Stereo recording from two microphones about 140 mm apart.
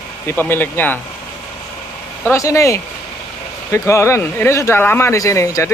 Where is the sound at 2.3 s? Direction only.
20° left (ahead or behind).